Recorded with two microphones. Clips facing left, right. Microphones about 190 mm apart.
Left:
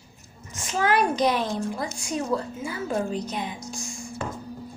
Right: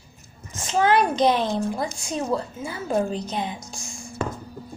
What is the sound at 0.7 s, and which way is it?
A woman's voice, 25° right (ahead or behind).